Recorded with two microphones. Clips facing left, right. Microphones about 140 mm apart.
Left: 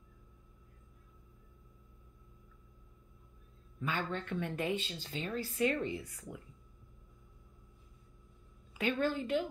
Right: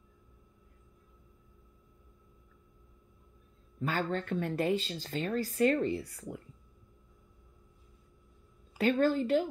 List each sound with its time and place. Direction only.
3.8 s speech: 40° right (ahead or behind)
8.7 s speech: 40° right (ahead or behind)